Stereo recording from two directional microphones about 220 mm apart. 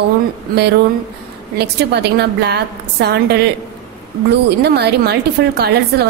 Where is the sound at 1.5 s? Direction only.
50° right (ahead or behind).